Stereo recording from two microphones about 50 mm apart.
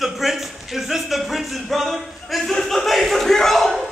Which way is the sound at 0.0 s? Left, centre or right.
Centre.